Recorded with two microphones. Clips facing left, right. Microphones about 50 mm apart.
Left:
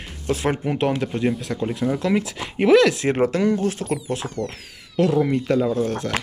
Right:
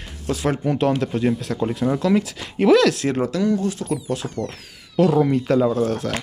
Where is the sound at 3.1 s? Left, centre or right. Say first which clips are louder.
Left 1 dB; left.